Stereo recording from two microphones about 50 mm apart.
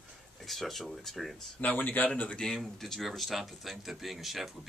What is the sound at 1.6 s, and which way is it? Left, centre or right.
Speech, left.